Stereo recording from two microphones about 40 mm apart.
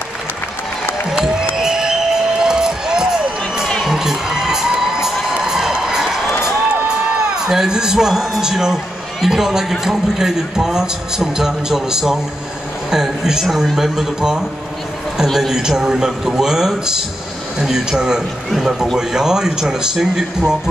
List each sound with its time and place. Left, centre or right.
1.1 s music: centre
1.6 s basketball bounce: centre
2.4 s crowd: centre
3.8 s children shouting: centre
5.3 s crowd: centre
6.4 s a man's voice: centre
15.5 s a man's voice: centre